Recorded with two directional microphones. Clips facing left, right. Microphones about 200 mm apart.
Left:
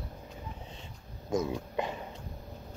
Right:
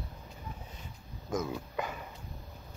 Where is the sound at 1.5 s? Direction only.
25° left (ahead or behind).